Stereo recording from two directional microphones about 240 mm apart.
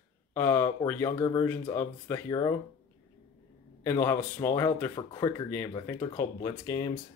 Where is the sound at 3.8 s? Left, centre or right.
Centre.